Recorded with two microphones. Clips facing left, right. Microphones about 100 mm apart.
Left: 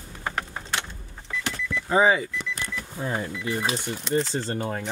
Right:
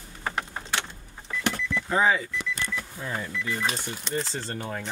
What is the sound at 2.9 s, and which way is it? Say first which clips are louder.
Speech: left 3 dB; 25° left (ahead or behind).